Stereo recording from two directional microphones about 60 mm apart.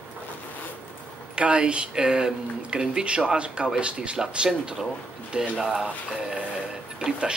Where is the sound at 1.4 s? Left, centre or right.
Centre.